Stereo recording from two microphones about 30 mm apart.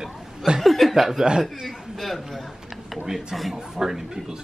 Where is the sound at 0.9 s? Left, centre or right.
Centre.